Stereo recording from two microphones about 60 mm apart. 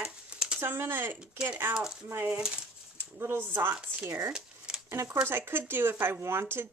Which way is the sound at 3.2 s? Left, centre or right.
Right.